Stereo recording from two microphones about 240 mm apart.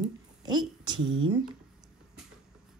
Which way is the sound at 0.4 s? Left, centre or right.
Centre.